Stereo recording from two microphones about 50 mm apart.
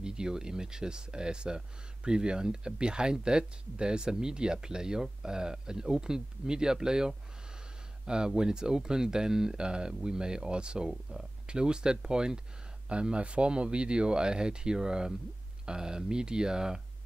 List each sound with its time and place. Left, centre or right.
0.0 s speech: centre
10.9 s speech: centre
11.4 s speech: centre